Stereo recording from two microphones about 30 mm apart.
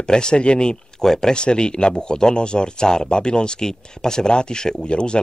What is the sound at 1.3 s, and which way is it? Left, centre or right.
Speech, left.